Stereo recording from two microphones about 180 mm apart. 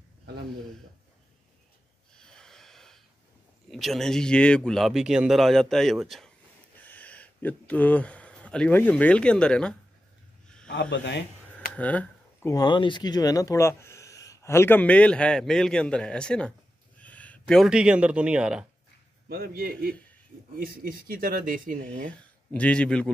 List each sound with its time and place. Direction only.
2.1 s snort: 5° left (ahead or behind)
3.7 s speech: centre (ahead or behind)
10.7 s a man's voice: 75° left (ahead or behind)
11.7 s speech: 10° left (ahead or behind)
19.2 s a man's voice: 60° right (ahead or behind)
22.5 s speech: 5° left (ahead or behind)